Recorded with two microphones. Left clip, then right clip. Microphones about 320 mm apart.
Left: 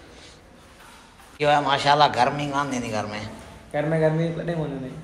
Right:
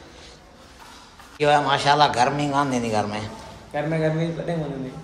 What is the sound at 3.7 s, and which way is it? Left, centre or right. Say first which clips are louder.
Speech: left 2 dB; left.